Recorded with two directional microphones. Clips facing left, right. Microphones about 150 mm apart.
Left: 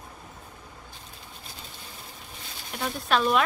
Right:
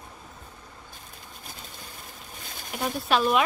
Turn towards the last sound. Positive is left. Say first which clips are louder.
# right 1 dB
turn(degrees=-5)  # may be behind; listen again after turning